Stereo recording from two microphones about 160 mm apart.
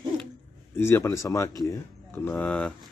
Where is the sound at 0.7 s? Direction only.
15° left (ahead or behind).